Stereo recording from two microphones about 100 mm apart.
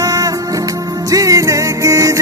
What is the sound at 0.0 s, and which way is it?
Music, 35° right (ahead or behind).